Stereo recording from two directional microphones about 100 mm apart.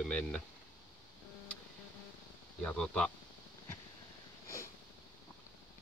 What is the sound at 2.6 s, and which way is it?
Speech, 10° left (ahead or behind).